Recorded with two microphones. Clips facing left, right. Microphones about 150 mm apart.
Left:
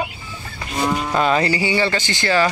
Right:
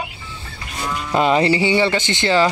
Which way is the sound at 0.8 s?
50° left (ahead or behind).